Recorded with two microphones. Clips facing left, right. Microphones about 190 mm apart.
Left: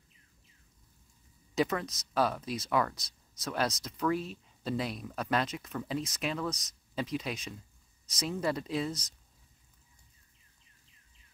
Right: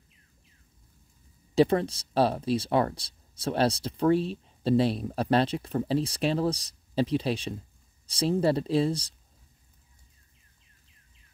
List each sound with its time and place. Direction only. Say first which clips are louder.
1.5 s speech: right 8 dB; 30° right (ahead or behind)